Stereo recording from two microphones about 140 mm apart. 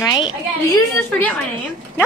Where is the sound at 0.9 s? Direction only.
10° left (ahead or behind).